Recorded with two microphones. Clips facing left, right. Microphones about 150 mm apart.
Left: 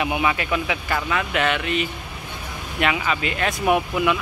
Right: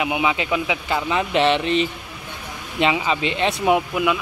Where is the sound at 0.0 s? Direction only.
15° right (ahead or behind).